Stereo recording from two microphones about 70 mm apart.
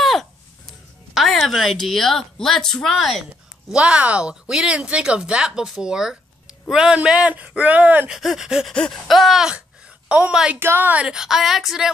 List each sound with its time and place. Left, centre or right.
0.0 s a sound: centre
1.1 s a woman's voice: centre
3.7 s speech: centre
8.1 s speech: centre
8.7 s a woman's voice: centre
10.0 s a woman's voice: right
10.6 s a woman's voice: right
11.0 s a woman's voice: centre